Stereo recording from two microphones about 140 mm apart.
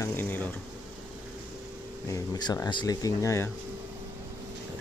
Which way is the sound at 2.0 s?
25° left (ahead or behind).